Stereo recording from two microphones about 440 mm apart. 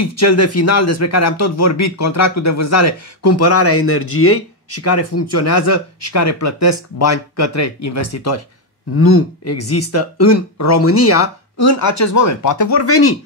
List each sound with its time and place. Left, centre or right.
0.1 s speech: left